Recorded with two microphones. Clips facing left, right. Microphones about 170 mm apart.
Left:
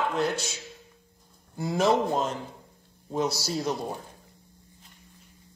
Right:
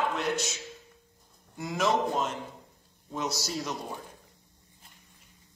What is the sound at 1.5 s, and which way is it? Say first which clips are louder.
A man's voice: left 4 dB; 30° left (ahead or behind).